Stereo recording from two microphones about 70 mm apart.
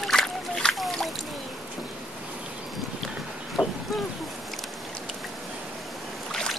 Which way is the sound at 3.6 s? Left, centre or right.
Centre.